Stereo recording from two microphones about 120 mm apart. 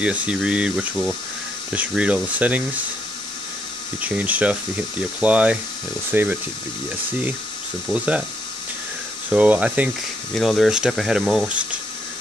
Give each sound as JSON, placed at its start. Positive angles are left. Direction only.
{"t": 0.0, "sound": "speech", "side_deg": -10}
{"t": 4.0, "sound": "speech", "side_deg": -10}
{"t": 7.9, "sound": "speech", "side_deg": -10}
{"t": 9.3, "sound": "speech", "side_deg": -10}
{"t": 10.3, "sound": "speech", "side_deg": 0}